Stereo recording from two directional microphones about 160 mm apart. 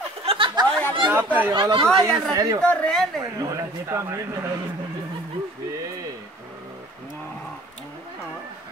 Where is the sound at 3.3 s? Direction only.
20° right (ahead or behind).